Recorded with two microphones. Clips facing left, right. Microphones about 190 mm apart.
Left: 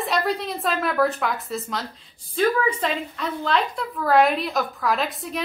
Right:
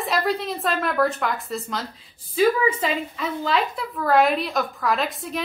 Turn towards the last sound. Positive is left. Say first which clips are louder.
# even
turn(degrees=0)  # may be behind; listen again after turning